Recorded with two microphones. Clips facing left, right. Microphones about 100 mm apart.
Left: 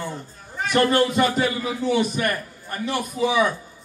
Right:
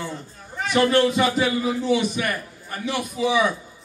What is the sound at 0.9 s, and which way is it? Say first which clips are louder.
Speech: even; 40° left (ahead or behind).